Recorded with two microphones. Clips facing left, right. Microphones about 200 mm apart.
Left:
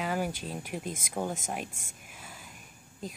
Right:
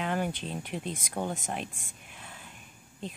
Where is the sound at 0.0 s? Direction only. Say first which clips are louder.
Right 1 dB; 5° left (ahead or behind).